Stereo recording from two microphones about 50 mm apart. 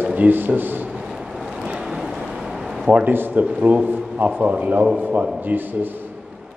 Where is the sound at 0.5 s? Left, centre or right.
Right.